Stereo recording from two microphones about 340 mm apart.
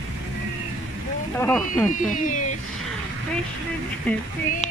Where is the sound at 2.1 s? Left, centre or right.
Left.